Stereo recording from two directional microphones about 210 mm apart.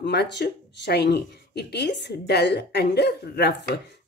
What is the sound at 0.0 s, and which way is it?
Speech, 55° left (ahead or behind).